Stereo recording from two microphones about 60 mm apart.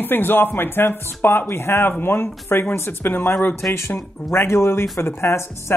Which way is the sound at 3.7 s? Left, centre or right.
Left.